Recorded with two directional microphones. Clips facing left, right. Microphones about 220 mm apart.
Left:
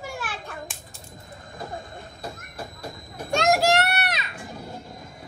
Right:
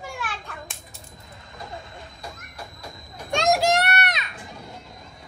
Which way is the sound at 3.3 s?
Centre (ahead or behind).